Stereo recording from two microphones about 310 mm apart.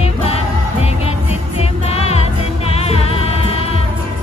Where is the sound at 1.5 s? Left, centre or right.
Centre.